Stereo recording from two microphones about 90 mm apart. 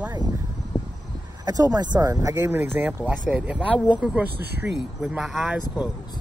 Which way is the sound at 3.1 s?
15° right (ahead or behind).